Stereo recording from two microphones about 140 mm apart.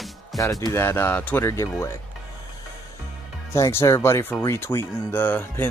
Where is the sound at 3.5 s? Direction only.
20° left (ahead or behind).